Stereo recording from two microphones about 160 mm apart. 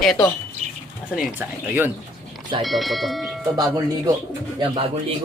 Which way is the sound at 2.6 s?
Centre (ahead or behind).